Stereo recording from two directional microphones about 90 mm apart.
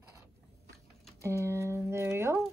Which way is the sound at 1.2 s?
30° right (ahead or behind).